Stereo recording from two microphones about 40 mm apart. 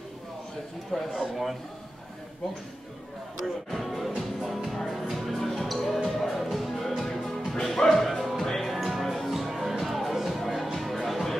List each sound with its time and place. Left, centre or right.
1.1 s a man's voice: centre
3.7 s a man's voice: centre
4.1 s music: centre
4.6 s music: centre